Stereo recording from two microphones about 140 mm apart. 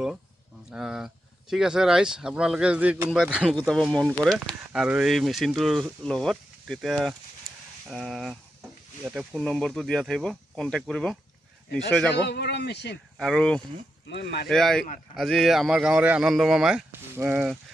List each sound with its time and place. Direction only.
0.7 s speech: 5° right (ahead or behind)
13.2 s speech: 5° left (ahead or behind)
17.1 s speech: 15° right (ahead or behind)